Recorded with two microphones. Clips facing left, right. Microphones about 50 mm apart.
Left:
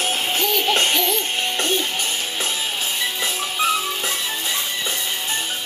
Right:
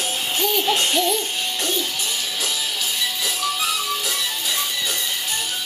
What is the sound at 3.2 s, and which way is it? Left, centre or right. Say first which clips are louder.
Music: left 3 dB; left.